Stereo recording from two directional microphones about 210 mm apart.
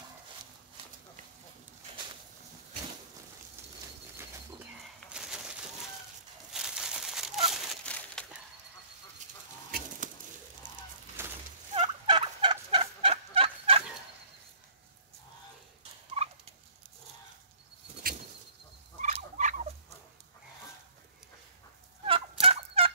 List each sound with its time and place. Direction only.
5.1 s a sound: 5° right (ahead or behind)
6.5 s a sound: centre (ahead or behind)
7.5 s crumpling: 5° left (ahead or behind)
9.7 s a sound: 45° right (ahead or behind)
11.2 s fowl: 10° right (ahead or behind)
11.7 s fowl: 25° right (ahead or behind)
16.1 s fowl: 30° right (ahead or behind)
18.0 s bird: 45° right (ahead or behind)
18.9 s turkey: 35° right (ahead or behind)
22.0 s fowl: 25° right (ahead or behind)